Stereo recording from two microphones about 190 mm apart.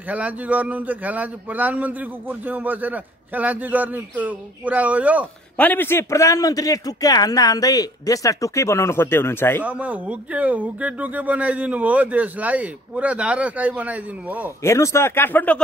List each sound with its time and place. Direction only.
0.1 s a man's voice: 10° right (ahead or behind)
5.6 s a man's voice: 10° left (ahead or behind)
9.7 s a man's voice: 10° right (ahead or behind)
14.6 s a man's voice: 15° left (ahead or behind)